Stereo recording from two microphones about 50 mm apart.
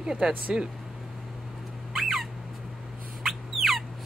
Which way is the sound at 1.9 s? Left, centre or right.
Centre.